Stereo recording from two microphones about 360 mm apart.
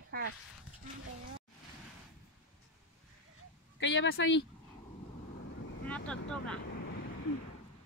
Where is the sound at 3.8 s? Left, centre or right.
Left.